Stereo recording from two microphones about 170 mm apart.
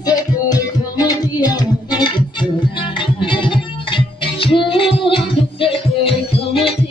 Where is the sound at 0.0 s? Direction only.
20° left (ahead or behind).